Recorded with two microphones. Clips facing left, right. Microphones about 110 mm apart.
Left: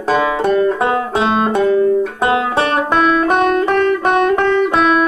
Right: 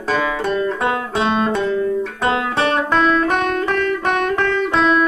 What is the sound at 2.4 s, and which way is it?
Banjo, 45° left (ahead or behind).